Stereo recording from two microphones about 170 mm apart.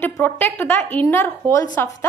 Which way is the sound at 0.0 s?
15° left (ahead or behind).